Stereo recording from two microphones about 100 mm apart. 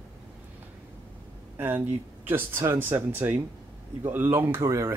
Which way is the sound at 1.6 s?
20° right (ahead or behind).